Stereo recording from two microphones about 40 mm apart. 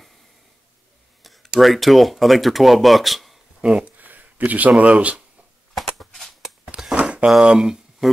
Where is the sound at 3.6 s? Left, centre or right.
Right.